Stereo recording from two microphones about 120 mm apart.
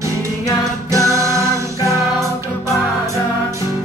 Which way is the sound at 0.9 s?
25° right (ahead or behind).